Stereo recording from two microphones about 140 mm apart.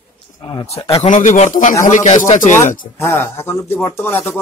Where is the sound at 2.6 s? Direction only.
75° left (ahead or behind).